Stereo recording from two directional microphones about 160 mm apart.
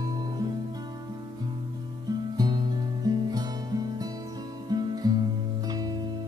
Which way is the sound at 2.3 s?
25° right (ahead or behind).